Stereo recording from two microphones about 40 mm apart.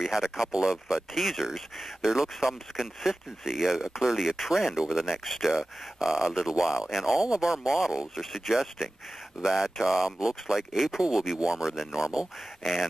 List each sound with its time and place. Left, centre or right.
0.0 s speech: centre
7.2 s speech: right
12.6 s speech: centre